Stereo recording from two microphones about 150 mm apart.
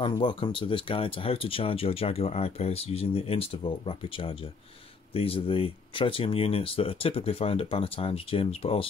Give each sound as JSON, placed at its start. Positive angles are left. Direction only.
{"t": 0.0, "sound": "speech", "side_deg": 35}